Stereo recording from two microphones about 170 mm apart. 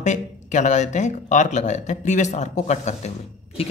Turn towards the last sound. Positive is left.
turn(degrees=40)  # may be behind; listen again after turning